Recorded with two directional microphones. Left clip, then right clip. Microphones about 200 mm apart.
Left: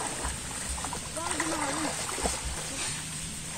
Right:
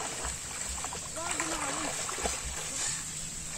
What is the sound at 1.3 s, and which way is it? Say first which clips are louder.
Splash: left 3 dB; 25° right (ahead or behind).